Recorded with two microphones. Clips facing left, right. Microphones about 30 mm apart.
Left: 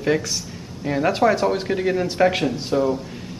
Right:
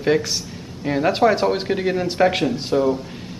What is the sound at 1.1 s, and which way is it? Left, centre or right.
Speech, right.